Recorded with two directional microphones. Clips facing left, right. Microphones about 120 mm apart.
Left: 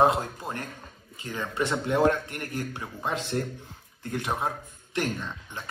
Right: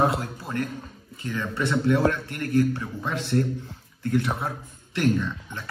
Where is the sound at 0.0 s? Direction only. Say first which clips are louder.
Left 2 dB; 25° left (ahead or behind).